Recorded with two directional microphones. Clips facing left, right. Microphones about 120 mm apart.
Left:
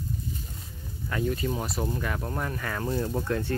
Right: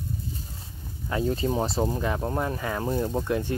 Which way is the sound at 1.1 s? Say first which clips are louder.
Right 3 dB; 25° right (ahead or behind).